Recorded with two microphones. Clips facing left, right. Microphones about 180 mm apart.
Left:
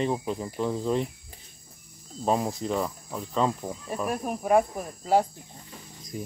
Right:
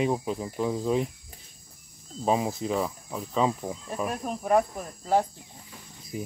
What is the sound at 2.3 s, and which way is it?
Speech, centre (ahead or behind).